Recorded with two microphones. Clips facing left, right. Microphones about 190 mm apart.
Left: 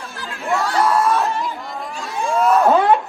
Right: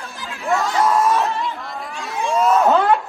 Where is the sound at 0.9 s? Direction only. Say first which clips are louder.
Right 1 dB; 15° right (ahead or behind).